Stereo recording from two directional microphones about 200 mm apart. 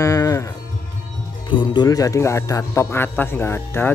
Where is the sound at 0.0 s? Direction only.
15° left (ahead or behind).